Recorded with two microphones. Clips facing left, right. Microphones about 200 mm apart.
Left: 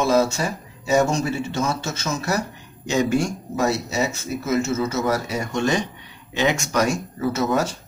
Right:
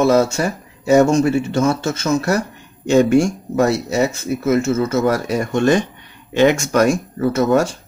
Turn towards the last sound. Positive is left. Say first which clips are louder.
# right 6 dB
turn(degrees=-50)  # may be behind; listen again after turning